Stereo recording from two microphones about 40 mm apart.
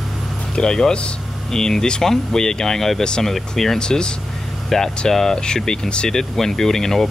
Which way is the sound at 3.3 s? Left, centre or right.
Centre.